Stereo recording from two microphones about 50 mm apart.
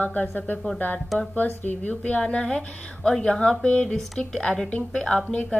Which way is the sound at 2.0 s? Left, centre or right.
Left.